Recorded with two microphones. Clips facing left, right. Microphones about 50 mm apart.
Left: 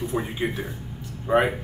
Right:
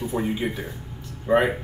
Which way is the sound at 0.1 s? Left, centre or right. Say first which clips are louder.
Right 1 dB; centre.